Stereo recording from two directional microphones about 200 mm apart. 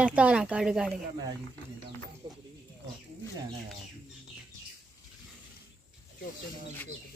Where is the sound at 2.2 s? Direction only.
20° right (ahead or behind).